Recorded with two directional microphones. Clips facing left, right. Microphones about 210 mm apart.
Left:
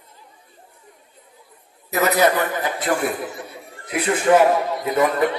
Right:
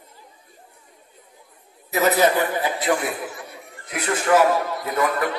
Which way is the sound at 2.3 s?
50° left (ahead or behind).